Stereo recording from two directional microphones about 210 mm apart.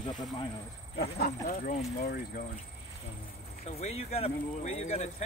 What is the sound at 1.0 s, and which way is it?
Speech, 50° left (ahead or behind).